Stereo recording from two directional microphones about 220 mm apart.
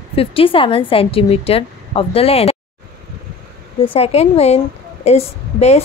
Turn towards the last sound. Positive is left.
turn(degrees=30)  # may be behind; listen again after turning